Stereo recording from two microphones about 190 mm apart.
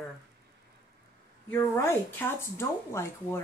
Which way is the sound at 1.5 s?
15° left (ahead or behind).